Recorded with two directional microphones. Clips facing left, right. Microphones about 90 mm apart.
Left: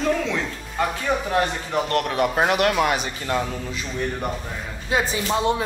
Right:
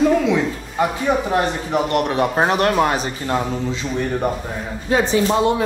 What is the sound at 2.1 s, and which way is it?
Speech, 30° right (ahead or behind).